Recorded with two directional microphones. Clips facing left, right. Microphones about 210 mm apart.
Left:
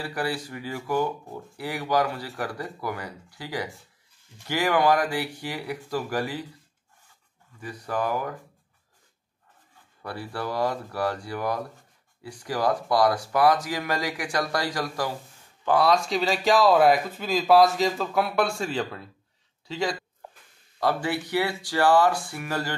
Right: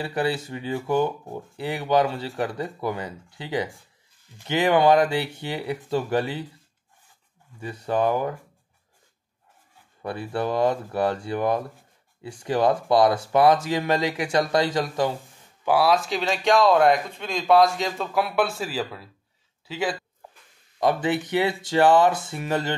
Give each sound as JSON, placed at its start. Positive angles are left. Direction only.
{"t": 0.0, "sound": "speech", "side_deg": -25}
{"t": 7.6, "sound": "speech", "side_deg": -25}
{"t": 10.0, "sound": "speech", "side_deg": -20}
{"t": 15.6, "sound": "speech", "side_deg": -5}
{"t": 20.8, "sound": "speech", "side_deg": -20}